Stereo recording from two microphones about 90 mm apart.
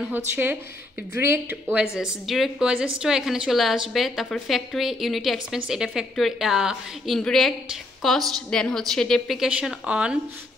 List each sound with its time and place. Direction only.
0.0 s speech: 20° right (ahead or behind)
2.0 s a woman's voice: 5° right (ahead or behind)
7.1 s a woman's voice: 5° left (ahead or behind)
9.6 s a woman's voice: 10° right (ahead or behind)